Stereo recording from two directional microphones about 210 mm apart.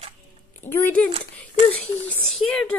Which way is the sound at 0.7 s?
10° left (ahead or behind).